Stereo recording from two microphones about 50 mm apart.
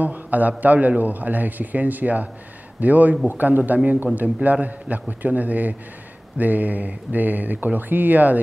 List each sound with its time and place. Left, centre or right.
0.0 s a man's voice: right